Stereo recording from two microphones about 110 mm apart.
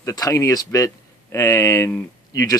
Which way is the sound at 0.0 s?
30° left (ahead or behind).